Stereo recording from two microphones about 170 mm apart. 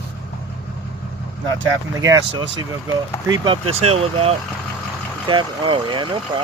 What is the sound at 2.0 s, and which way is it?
Speech, 20° right (ahead or behind).